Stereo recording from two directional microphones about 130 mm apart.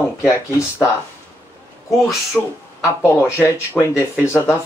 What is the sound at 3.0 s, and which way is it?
Speech, 20° left (ahead or behind).